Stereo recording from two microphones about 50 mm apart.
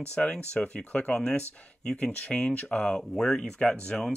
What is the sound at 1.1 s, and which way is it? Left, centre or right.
Speech, centre.